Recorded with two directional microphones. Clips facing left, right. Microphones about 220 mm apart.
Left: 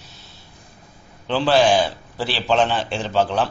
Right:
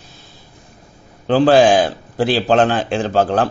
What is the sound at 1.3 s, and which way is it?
A man's voice, 50° right (ahead or behind).